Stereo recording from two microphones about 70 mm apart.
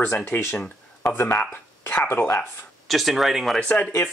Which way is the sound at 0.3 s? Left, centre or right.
Left.